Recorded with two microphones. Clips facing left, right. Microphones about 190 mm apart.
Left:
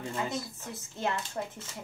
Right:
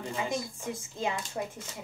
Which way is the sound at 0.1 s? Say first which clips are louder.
Right 3 dB; 10° right (ahead or behind).